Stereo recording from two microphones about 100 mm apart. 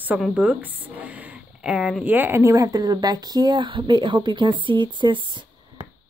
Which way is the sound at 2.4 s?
35° right (ahead or behind).